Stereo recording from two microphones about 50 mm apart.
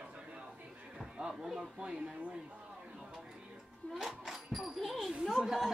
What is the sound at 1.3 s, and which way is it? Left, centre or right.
Music, centre.